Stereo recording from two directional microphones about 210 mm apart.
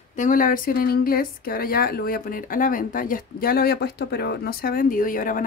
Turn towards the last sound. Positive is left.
turn(degrees=40)  # may be behind; listen again after turning